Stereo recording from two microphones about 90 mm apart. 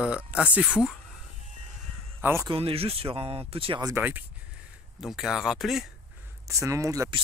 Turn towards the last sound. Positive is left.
turn(degrees=-40)  # may be behind; listen again after turning